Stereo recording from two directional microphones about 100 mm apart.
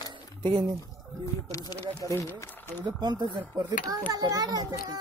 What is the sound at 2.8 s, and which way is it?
A child's voice, 45° right (ahead or behind).